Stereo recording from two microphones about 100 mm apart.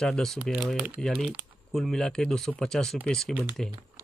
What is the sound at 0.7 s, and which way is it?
Speech, 15° right (ahead or behind).